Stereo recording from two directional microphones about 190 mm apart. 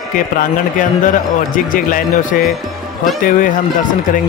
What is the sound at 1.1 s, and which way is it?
A man's voice, 45° left (ahead or behind).